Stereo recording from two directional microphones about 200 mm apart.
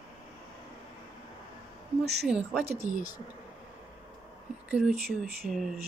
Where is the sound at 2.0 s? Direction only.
55° right (ahead or behind).